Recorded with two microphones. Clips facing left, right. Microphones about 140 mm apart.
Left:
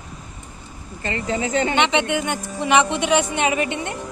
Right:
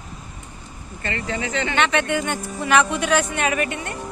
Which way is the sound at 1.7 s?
20° left (ahead or behind).